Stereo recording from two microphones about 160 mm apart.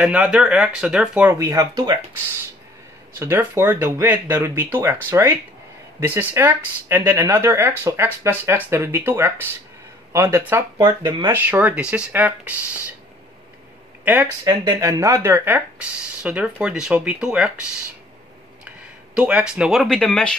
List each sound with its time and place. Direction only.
0.0 s speech: 5° right (ahead or behind)
1.4 s speech: 25° right (ahead or behind)
3.2 s speech: 15° right (ahead or behind)
10.8 s speech: 30° right (ahead or behind)
11.3 s speech: 10° right (ahead or behind)
14.0 s speech: 10° right (ahead or behind)
14.4 s speech: 20° right (ahead or behind); by 17.6 s 5° right (ahead or behind)
19.1 s speech: 5° right (ahead or behind)